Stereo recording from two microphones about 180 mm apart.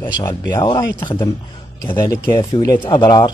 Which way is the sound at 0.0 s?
20° left (ahead or behind).